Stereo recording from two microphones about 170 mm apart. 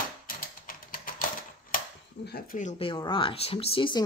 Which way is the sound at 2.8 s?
30° left (ahead or behind).